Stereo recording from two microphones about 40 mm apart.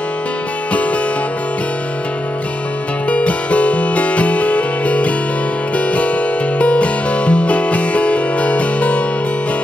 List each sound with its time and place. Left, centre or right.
3.1 s music: left